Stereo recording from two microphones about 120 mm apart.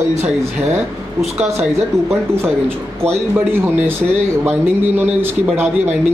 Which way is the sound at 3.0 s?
20° right (ahead or behind).